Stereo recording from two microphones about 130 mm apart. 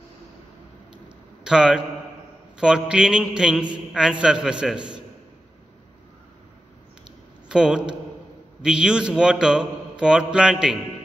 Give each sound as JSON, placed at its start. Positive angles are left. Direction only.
{"t": 1.0, "sound": "a sound", "side_deg": -5}
{"t": 2.5, "sound": "a man's voice", "side_deg": -5}
{"t": 7.4, "sound": "a man's voice", "side_deg": -5}